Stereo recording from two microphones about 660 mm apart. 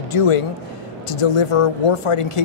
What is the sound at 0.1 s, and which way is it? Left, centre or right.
Speech, left.